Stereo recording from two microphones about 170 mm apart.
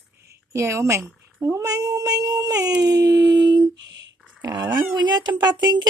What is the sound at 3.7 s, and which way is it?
Speech, 90° right.